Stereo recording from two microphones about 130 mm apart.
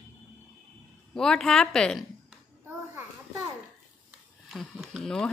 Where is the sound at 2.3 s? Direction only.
15° right (ahead or behind).